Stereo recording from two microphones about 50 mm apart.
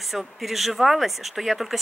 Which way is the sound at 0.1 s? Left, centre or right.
Centre.